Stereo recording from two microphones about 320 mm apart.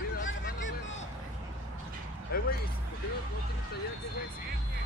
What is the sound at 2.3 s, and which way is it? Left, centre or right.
Speech, left.